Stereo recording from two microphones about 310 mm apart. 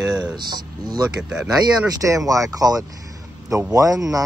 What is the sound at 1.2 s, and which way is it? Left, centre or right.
A man's voice, centre.